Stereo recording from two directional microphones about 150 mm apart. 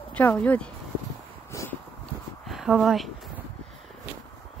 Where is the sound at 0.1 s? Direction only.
10° left (ahead or behind).